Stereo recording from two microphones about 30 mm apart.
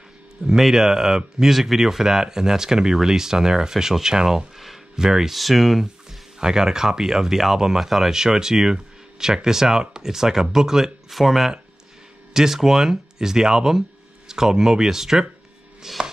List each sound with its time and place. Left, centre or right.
0.5 s speech: centre
5.3 s speech: centre
6.4 s speech: right
7.8 s speech: centre
8.1 s speech: centre
11.1 s speech: centre